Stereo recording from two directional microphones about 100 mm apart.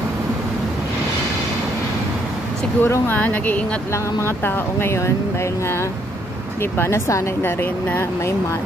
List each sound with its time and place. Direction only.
2.8 s speech: 20° left (ahead or behind)
6.8 s speech: 30° left (ahead or behind)